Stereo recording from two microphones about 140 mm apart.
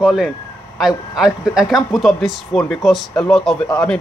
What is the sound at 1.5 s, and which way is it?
A man's voice, centre (ahead or behind).